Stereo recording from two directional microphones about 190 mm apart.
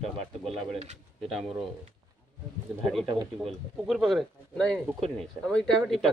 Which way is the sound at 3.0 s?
25° right (ahead or behind).